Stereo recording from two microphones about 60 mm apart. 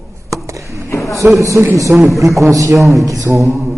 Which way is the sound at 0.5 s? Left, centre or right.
Right.